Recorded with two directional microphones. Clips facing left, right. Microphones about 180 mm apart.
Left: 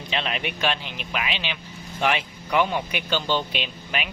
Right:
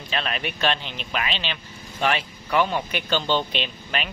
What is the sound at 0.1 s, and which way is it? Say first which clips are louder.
Speech: even; 15° left (ahead or behind).